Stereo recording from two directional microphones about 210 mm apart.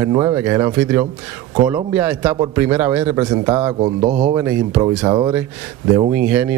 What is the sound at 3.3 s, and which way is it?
Speech, 20° right (ahead or behind).